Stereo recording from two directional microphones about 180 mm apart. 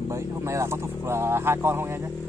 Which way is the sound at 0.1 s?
15° right (ahead or behind).